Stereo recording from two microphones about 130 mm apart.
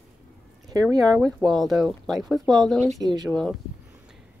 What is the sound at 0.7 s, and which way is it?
Speech, 30° right (ahead or behind).